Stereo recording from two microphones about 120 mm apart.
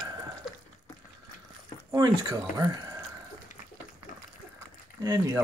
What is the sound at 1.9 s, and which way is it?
Speech, 35° right (ahead or behind).